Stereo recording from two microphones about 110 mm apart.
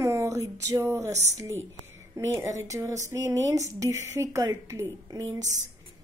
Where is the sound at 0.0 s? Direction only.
30° right (ahead or behind).